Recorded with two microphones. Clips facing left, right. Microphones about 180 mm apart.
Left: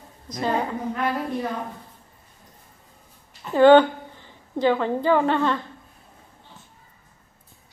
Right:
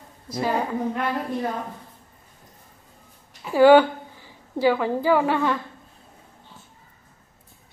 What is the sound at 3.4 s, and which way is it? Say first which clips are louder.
A woman's voice: even; 10° right (ahead or behind).